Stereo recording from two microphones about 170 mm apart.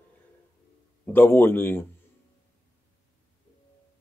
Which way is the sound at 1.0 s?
10° left (ahead or behind).